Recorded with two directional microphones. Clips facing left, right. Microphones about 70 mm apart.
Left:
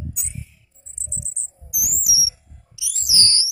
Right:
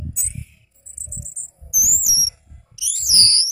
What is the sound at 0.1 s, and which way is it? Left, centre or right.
Music, left.